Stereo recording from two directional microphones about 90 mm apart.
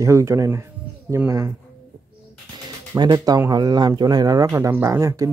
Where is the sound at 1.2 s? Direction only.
20° right (ahead or behind).